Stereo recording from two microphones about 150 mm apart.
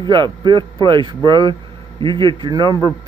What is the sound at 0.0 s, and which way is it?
Speech, 30° right (ahead or behind).